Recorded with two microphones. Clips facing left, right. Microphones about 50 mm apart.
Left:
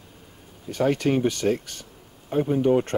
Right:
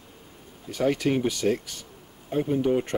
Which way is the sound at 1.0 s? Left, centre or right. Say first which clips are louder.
Left 2 dB; centre.